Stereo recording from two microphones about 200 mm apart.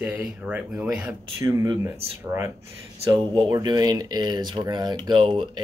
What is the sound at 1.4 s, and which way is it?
Speech, 15° right (ahead or behind).